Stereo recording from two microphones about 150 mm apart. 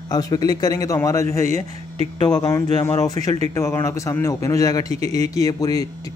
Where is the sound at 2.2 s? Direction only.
30° left (ahead or behind).